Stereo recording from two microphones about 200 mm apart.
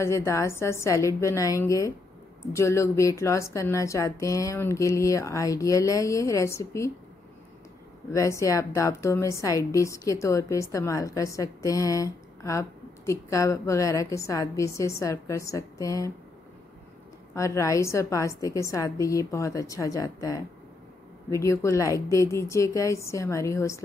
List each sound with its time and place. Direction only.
0.0 s a woman's voice: 15° left (ahead or behind)
8.1 s a woman's voice: 15° left (ahead or behind)
17.3 s a woman's voice: 15° left (ahead or behind)